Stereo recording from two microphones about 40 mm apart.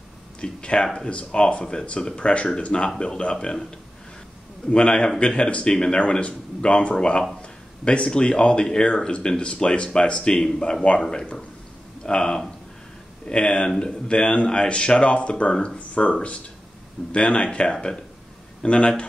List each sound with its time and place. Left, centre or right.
0.4 s speech: left
4.6 s speech: left